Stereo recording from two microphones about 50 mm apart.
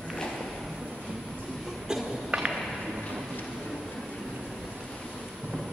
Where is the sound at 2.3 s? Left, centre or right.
Right.